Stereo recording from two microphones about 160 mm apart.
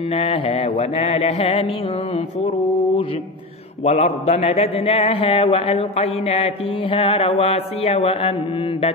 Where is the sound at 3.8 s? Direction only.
45° left (ahead or behind).